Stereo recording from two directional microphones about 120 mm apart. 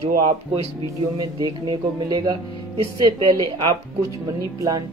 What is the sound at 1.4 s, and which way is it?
Speech, 35° right (ahead or behind).